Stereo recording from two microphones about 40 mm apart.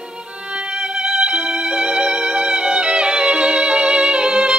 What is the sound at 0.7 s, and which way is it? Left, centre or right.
Violin, right.